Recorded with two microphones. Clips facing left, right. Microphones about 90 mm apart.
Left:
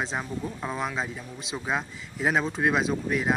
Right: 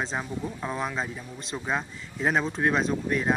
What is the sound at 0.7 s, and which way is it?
Speech, centre (ahead or behind).